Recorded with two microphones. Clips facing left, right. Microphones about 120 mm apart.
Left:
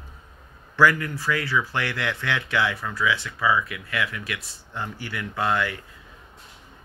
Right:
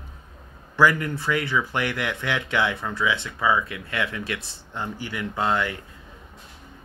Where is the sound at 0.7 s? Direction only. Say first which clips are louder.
Even; 20° right (ahead or behind).